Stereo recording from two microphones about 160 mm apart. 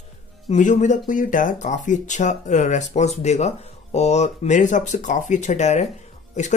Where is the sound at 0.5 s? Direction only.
50° left (ahead or behind).